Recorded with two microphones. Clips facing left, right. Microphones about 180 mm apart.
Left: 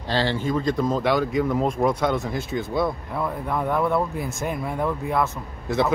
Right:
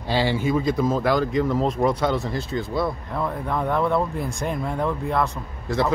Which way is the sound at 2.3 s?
20° left (ahead or behind).